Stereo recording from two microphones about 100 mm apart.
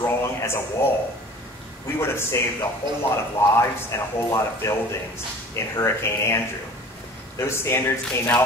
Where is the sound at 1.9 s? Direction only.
25° left (ahead or behind).